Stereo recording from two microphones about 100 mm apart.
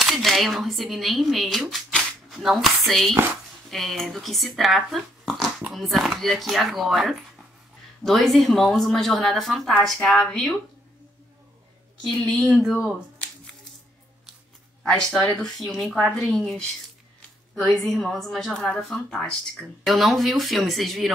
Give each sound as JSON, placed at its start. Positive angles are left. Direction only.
{"t": 0.0, "sound": "speech", "side_deg": 0}
{"t": 12.1, "sound": "speech", "side_deg": 0}
{"t": 14.8, "sound": "speech", "side_deg": 5}